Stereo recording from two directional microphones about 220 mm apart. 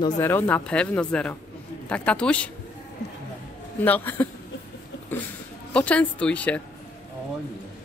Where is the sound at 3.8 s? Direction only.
10° left (ahead or behind).